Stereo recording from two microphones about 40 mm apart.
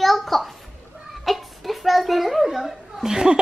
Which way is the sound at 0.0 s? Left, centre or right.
Centre.